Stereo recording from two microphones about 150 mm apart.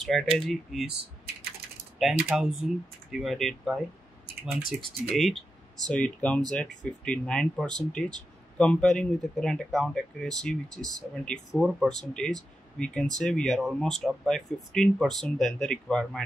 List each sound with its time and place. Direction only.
0.0 s speech: 5° left (ahead or behind)
2.0 s speech: centre (ahead or behind)
5.1 s speech: centre (ahead or behind)